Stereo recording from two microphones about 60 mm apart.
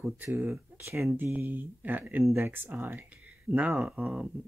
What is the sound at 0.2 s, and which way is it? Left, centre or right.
Speech, right.